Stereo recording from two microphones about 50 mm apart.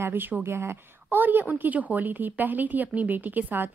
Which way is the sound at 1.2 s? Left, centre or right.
Right.